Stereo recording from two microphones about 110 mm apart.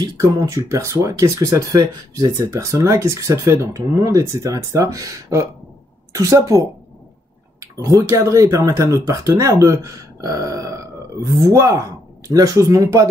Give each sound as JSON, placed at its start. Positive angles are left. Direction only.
{"t": 0.0, "sound": "speech", "side_deg": -30}